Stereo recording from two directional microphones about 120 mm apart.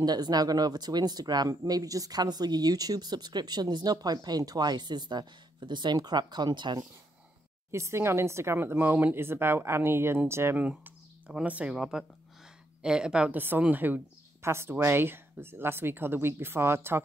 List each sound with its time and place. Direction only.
0.0 s speech: 35° right (ahead or behind)
7.7 s speech: 20° right (ahead or behind)